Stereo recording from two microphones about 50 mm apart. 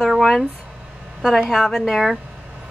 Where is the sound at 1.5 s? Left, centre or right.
Centre.